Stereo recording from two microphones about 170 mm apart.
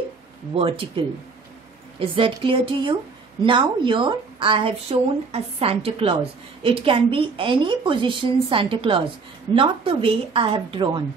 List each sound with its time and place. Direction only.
0.6 s a woman's voice: 35° right (ahead or behind)